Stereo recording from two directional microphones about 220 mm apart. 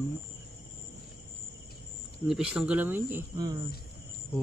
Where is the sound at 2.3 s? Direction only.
5° right (ahead or behind).